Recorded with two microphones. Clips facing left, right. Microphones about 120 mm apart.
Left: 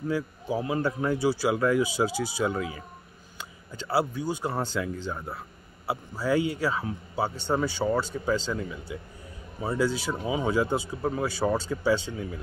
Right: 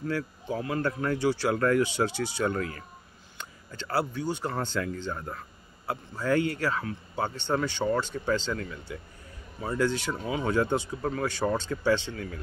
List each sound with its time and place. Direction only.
0.1 s speech: 15° left (ahead or behind)